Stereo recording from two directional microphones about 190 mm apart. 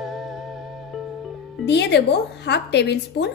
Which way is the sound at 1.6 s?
65° left (ahead or behind).